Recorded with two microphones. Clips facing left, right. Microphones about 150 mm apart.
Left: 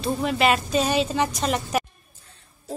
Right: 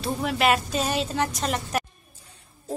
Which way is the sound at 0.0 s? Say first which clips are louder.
Left 2 dB; centre (ahead or behind).